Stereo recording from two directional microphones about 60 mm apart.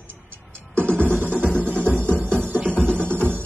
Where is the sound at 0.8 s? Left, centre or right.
Right.